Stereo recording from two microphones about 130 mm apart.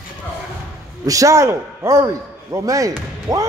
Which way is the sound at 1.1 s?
25° right (ahead or behind).